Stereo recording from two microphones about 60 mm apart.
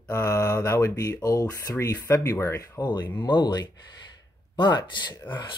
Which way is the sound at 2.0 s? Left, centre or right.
Left.